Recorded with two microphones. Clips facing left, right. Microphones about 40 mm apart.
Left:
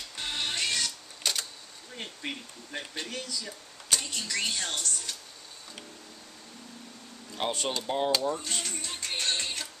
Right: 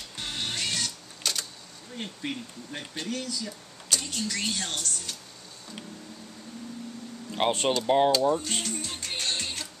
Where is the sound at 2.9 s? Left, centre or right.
Left.